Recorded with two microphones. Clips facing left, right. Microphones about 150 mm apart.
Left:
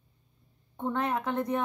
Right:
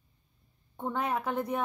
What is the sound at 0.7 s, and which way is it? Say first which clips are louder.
Speech: left 2 dB; 10° right (ahead or behind).